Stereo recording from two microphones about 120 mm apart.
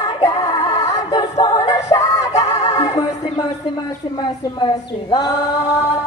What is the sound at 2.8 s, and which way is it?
Music, 65° left (ahead or behind).